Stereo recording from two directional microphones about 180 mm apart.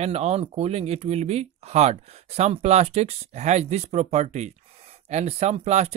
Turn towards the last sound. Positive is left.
turn(degrees=-35)  # may be behind; listen again after turning